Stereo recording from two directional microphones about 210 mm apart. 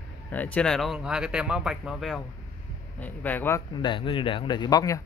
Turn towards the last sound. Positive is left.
turn(degrees=15)  # may be behind; listen again after turning